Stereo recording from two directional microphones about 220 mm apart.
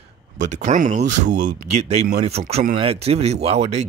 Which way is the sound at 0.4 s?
35° right (ahead or behind).